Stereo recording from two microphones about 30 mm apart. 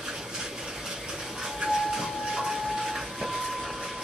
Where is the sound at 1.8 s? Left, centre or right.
Centre.